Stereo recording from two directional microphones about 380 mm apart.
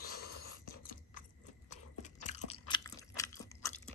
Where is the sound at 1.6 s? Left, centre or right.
Centre.